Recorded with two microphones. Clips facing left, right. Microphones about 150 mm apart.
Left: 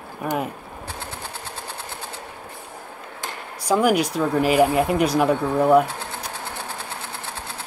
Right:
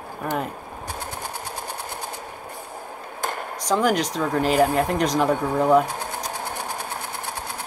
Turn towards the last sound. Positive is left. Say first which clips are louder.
# right 2 dB
turn(degrees=-15)  # may be behind; listen again after turning